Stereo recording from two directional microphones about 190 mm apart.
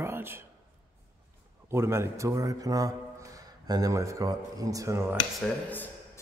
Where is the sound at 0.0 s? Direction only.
10° right (ahead or behind).